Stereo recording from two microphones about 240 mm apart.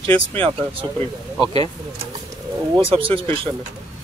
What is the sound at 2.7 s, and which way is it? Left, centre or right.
Speech, right.